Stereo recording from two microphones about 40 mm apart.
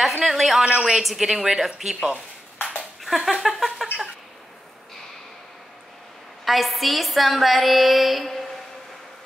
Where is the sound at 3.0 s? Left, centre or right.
Centre.